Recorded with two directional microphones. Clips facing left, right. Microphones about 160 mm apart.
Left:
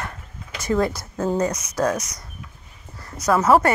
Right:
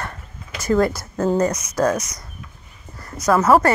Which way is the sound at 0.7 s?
10° left (ahead or behind).